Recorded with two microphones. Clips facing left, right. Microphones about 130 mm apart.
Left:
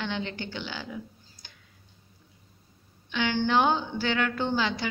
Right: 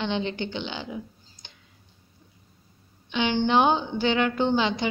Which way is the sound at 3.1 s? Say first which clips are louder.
Right 3 dB; 20° right (ahead or behind).